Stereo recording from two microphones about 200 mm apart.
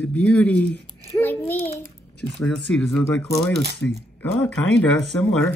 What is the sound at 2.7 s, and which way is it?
Speech, centre (ahead or behind).